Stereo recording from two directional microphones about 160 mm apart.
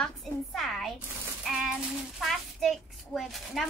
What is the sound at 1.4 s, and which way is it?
Rattle, 5° right (ahead or behind).